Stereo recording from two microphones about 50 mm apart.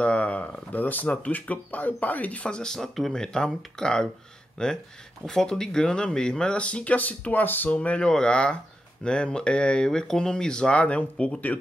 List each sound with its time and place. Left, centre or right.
0.0 s a sound: left
1.1 s speech: left
2.4 s speech: centre; by 7.7 s left
7.7 s speech: left